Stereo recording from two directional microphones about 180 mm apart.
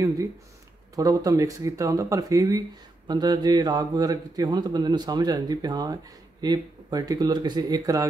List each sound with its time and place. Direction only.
0.9 s speech: 20° right (ahead or behind)